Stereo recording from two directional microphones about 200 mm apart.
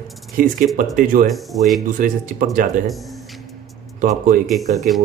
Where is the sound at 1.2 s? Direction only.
Centre (ahead or behind).